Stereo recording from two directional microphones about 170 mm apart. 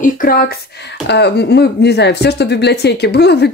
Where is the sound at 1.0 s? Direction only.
80° left.